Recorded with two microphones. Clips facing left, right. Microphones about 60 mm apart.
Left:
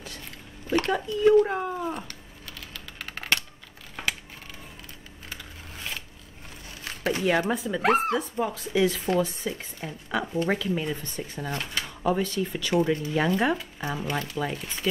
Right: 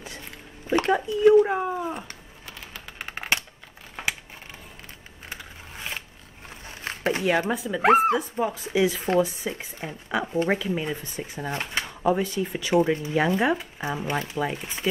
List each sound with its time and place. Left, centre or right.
0.7 s speech: centre
2.7 s typing: right
6.7 s a sound: right
7.2 s speech: centre